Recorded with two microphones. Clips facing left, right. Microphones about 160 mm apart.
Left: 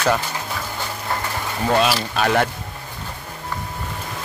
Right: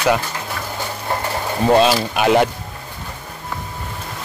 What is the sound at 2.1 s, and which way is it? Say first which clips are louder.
Speech: right 4 dB; 15° right (ahead or behind).